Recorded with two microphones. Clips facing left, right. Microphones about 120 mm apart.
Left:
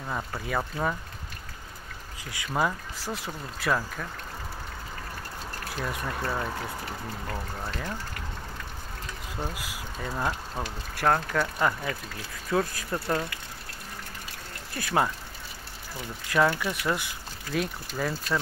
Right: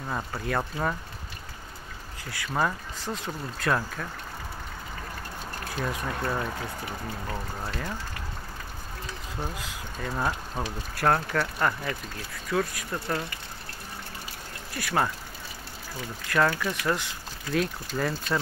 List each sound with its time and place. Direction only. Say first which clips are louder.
0.1 s speech: right 1 dB; centre (ahead or behind)
2.2 s speech: right 1 dB; 20° left (ahead or behind)
2.5 s speech: even; 5° left (ahead or behind)
5.9 s speech: right 1 dB; centre (ahead or behind)
7.2 s speech: even; 10° right (ahead or behind)
9.4 s speech: left 1 dB; 10° left (ahead or behind)
10.1 s speech: right 1 dB; 10° right (ahead or behind)
12.4 s speech: left 1 dB; 30° left (ahead or behind)
14.8 s speech: left 1 dB; 25° left (ahead or behind)
16.3 s speech: left 1 dB; 15° left (ahead or behind)